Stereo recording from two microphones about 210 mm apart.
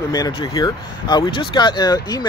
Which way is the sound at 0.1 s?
20° left (ahead or behind).